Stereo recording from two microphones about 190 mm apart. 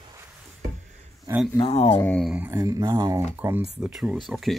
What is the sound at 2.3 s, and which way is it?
Speech, 10° right (ahead or behind).